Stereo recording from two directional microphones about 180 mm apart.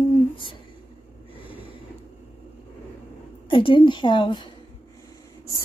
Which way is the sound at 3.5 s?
30° left (ahead or behind).